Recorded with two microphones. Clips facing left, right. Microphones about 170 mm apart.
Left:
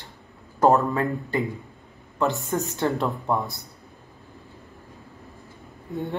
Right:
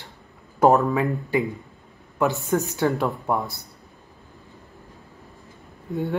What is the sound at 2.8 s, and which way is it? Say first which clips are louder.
Speech: right 2 dB; centre (ahead or behind).